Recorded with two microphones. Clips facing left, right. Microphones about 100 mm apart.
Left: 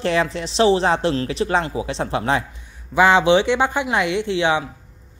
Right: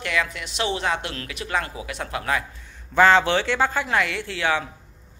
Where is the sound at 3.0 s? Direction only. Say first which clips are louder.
Left 3 dB; 15° left (ahead or behind).